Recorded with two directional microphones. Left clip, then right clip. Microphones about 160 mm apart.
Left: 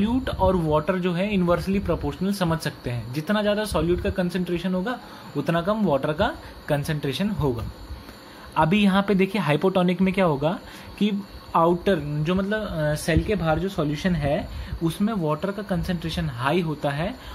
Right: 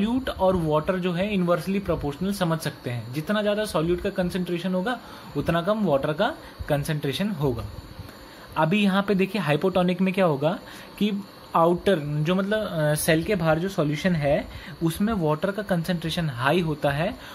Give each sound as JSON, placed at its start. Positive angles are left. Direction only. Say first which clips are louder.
{"t": 0.0, "sound": "speech", "louder": "even", "side_deg": 0}
{"t": 8.5, "sound": "a man's voice", "louder": "left 2 dB", "side_deg": 5}